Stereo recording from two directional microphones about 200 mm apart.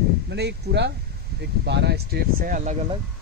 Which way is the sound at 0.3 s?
55° right (ahead or behind).